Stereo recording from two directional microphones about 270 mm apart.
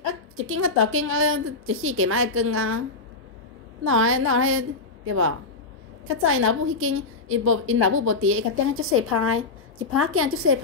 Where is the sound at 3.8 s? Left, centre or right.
Right.